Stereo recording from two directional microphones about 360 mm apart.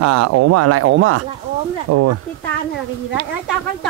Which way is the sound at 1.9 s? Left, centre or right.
Right.